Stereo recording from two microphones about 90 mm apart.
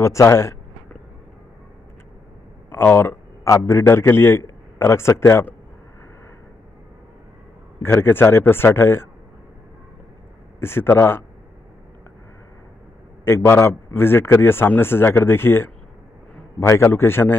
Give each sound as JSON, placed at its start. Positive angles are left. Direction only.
{"t": 0.0, "sound": "speech", "side_deg": 35}
{"t": 2.7, "sound": "a man's voice", "side_deg": 25}
{"t": 7.8, "sound": "a man's voice", "side_deg": 25}
{"t": 10.6, "sound": "a man's voice", "side_deg": 25}
{"t": 13.2, "sound": "a man's voice", "side_deg": 25}